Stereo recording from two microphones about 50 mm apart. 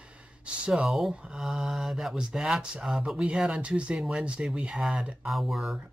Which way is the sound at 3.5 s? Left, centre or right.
Right.